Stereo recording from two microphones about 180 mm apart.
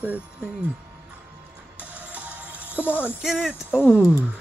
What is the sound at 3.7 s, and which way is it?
Speech, 10° left (ahead or behind).